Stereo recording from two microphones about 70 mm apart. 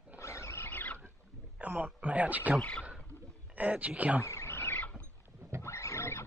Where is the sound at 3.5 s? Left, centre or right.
Right.